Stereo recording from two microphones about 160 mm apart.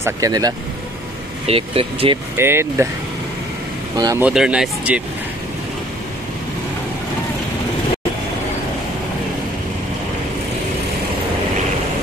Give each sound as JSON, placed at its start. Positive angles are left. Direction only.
{"t": 0.0, "sound": "speech", "side_deg": -20}
{"t": 1.5, "sound": "speech", "side_deg": -35}
{"t": 2.3, "sound": "speech", "side_deg": -15}
{"t": 3.9, "sound": "speech", "side_deg": -25}
{"t": 4.2, "sound": "speech", "side_deg": -5}